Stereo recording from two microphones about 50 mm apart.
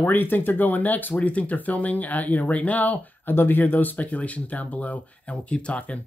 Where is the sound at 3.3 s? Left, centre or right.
Left.